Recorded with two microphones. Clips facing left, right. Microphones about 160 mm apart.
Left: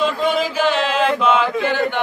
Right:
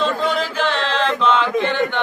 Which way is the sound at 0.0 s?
10° left (ahead or behind).